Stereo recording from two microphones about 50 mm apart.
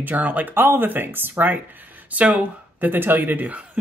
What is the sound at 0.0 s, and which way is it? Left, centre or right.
Speech, right.